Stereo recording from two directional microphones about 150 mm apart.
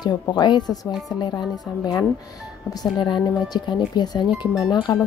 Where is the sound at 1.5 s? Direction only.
Centre (ahead or behind).